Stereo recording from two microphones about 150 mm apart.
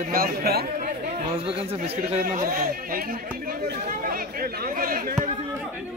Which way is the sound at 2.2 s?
65° right (ahead or behind).